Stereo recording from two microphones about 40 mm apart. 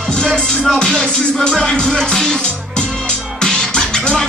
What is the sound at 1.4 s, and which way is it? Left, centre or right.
Music, centre.